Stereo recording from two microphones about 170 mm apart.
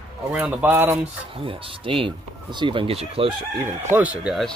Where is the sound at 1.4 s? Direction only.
30° right (ahead or behind).